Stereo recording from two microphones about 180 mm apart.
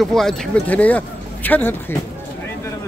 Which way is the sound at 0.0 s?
Centre (ahead or behind).